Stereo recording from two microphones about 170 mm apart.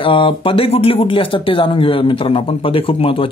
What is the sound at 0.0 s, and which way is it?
Speech, 30° left (ahead or behind).